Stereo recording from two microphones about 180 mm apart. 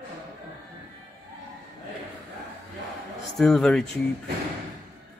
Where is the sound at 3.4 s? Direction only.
Centre (ahead or behind).